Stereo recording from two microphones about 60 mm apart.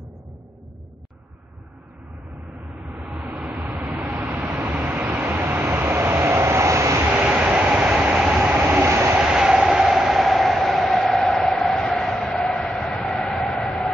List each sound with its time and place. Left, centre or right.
2.9 s vehicle: right
3.7 s vehicle: centre
4.0 s vehicle: right
7.1 s vehicle: right
7.3 s train: centre
8.7 s train: right
9.1 s vehicle: centre
11.1 s train: centre